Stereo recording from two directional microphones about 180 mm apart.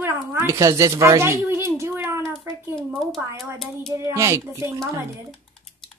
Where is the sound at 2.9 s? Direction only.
5° left (ahead or behind).